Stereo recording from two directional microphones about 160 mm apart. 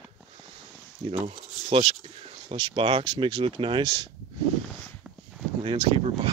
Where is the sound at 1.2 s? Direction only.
35° right (ahead or behind).